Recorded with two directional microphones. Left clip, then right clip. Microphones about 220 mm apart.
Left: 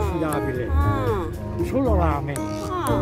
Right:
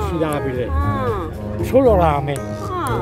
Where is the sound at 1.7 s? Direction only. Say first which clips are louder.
Right 10 dB; 40° right (ahead or behind).